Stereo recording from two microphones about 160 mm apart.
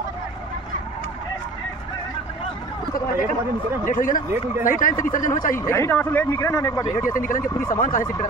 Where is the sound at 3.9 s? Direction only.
55° left (ahead or behind).